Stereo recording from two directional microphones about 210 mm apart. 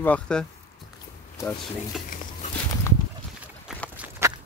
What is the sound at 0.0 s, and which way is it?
Speech, 5° left (ahead or behind).